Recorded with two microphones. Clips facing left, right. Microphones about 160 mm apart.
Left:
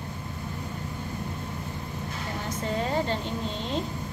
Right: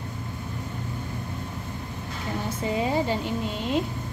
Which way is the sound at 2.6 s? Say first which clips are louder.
Right 2 dB; 10° right (ahead or behind).